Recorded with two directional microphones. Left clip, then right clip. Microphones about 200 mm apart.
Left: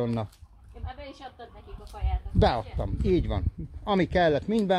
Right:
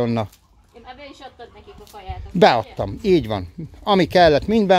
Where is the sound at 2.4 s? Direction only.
40° right (ahead or behind).